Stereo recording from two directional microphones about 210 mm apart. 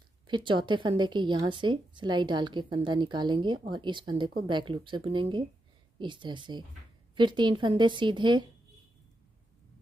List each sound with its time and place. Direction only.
0.3 s speech: 25° right (ahead or behind)